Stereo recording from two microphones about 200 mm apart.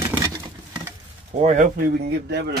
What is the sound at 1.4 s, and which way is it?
Speech, 40° right (ahead or behind).